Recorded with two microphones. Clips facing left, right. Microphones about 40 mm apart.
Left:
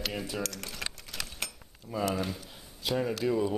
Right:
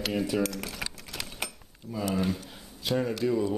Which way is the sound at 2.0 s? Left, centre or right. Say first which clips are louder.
Right 5 dB; centre.